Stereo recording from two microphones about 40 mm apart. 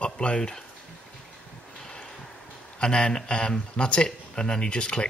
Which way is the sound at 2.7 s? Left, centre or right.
Left.